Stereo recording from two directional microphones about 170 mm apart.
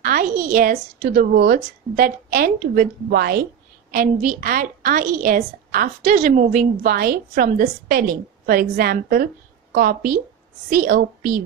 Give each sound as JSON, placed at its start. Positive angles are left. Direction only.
{"t": 0.0, "sound": "a woman's voice", "side_deg": -55}
{"t": 3.9, "sound": "a woman's voice", "side_deg": -50}